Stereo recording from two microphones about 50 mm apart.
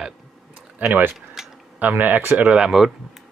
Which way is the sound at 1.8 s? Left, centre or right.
Right.